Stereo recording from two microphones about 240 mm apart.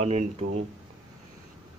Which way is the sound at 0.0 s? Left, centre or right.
Right.